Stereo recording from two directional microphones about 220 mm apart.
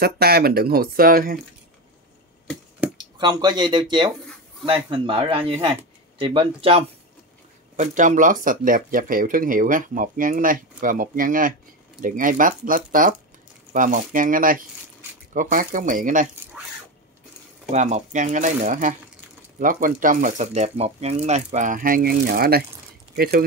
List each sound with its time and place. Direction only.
0.0 s speech: 45° right (ahead or behind)
3.0 s speech: 20° right (ahead or behind); by 16.3 s 35° right (ahead or behind)
17.6 s speech: 30° right (ahead or behind)